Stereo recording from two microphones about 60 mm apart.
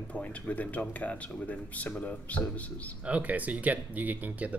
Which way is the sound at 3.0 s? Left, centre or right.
Right.